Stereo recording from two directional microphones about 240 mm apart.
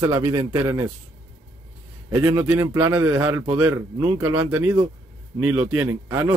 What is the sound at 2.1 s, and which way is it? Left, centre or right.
Speech, centre.